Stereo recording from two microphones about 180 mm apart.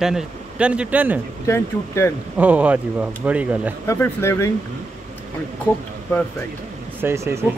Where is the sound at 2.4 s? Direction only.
10° right (ahead or behind).